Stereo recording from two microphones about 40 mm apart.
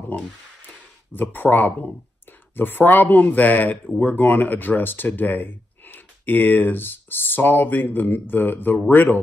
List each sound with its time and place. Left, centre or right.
1.1 s speech: left
4.0 s speech: left
8.9 s speech: left